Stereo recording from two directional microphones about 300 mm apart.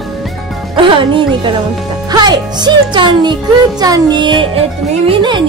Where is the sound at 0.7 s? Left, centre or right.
Centre.